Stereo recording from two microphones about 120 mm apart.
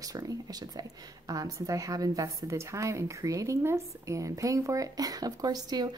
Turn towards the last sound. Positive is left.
turn(degrees=-35)  # may be behind; listen again after turning